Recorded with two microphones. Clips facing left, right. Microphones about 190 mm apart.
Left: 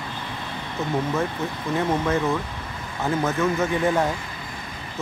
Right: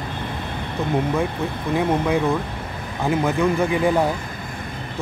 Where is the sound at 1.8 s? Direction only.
15° right (ahead or behind).